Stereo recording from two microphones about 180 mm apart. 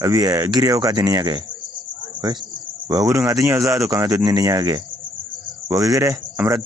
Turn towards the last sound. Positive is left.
turn(degrees=-20)  # may be behind; listen again after turning